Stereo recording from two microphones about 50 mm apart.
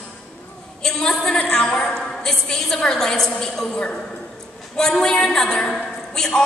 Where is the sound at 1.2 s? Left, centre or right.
Left.